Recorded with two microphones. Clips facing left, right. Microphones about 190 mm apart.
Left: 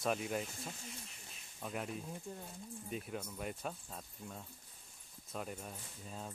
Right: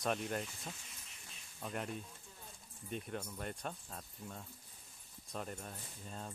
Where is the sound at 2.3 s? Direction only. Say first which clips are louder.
Left 13 dB; 50° left (ahead or behind).